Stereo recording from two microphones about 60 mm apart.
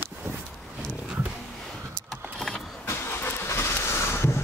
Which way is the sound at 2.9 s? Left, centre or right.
Left.